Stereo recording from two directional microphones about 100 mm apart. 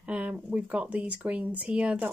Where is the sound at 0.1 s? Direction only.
15° right (ahead or behind).